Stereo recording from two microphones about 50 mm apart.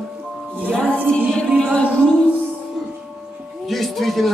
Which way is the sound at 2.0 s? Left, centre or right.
Centre.